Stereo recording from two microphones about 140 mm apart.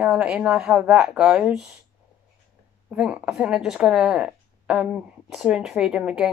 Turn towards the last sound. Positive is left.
turn(degrees=-5)  # may be behind; listen again after turning